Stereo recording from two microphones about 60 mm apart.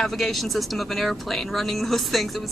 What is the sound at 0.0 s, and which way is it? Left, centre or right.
Speech, centre.